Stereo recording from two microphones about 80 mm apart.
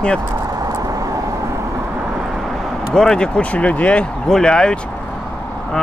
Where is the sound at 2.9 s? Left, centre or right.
Centre.